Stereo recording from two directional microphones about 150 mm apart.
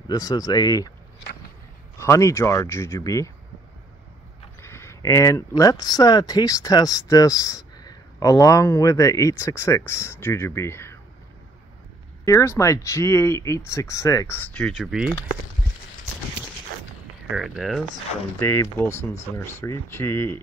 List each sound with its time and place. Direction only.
0.1 s speech: 25° left (ahead or behind)
2.0 s speech: 20° left (ahead or behind)
4.6 s speech: 15° left (ahead or behind)
12.3 s speech: 20° left (ahead or behind)
14.6 s speech: 5° right (ahead or behind)
17.3 s speech: centre (ahead or behind)
18.4 s speech: 15° left (ahead or behind)